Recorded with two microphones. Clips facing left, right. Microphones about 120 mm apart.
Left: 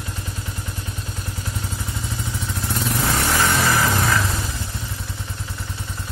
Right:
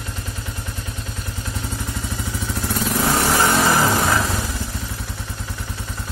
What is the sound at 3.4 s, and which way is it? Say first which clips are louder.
Music: right 2 dB; 30° right (ahead or behind).